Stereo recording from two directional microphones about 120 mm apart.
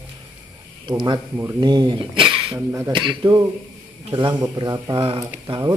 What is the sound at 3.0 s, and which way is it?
A man's voice, 40° right (ahead or behind).